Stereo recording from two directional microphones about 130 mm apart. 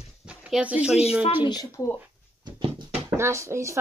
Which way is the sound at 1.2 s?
35° left (ahead or behind).